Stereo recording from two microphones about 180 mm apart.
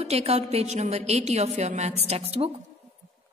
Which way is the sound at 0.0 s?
35° right (ahead or behind).